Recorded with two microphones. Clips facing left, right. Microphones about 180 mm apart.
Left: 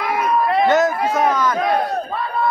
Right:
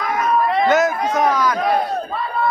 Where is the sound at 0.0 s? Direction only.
10° left (ahead or behind).